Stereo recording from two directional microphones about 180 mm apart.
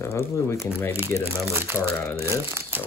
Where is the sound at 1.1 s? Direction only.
15° right (ahead or behind).